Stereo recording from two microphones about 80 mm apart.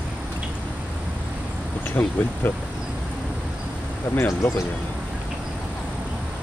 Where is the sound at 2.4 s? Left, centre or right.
Left.